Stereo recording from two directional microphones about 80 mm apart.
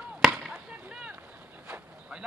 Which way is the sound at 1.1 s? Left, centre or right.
Right.